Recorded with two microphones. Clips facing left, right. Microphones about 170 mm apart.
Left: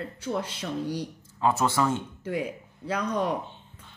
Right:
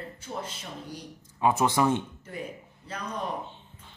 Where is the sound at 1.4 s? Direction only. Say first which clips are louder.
Right 1 dB; 15° right (ahead or behind).